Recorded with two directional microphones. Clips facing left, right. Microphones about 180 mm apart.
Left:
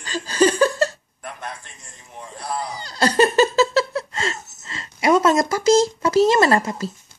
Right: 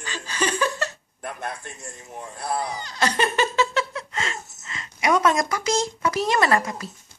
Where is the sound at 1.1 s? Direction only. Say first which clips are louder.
Right 3 dB; 45° right (ahead or behind).